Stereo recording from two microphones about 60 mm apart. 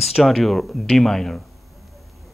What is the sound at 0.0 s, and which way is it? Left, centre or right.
Speech, centre.